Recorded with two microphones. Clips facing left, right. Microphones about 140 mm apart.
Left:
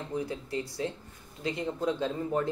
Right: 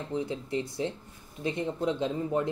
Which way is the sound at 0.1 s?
25° right (ahead or behind).